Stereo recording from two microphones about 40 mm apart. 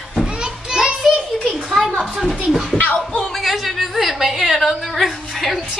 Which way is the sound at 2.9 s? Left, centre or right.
Left.